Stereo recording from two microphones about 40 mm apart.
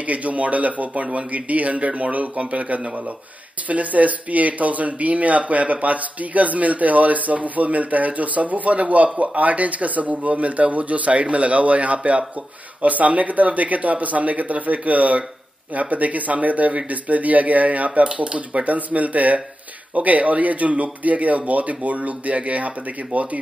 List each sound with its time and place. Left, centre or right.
0.0 s speech: right